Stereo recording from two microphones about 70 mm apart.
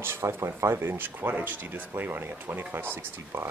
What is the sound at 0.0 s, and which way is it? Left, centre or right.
Speech, right.